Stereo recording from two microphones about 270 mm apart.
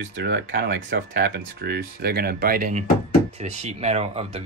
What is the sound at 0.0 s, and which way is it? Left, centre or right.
Speech, right.